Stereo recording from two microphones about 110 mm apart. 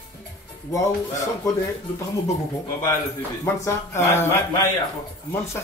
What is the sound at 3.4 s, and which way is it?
Speech, 25° left (ahead or behind).